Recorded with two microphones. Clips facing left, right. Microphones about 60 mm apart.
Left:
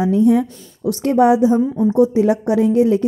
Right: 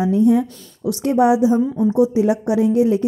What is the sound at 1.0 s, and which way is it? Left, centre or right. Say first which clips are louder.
Speech: left 2 dB; left.